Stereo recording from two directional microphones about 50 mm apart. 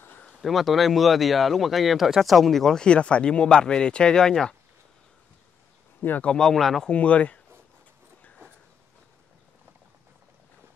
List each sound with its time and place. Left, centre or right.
0.4 s speech: centre
2.8 s speech: left
5.9 s speech: left
6.2 s speech: centre
6.9 s speech: left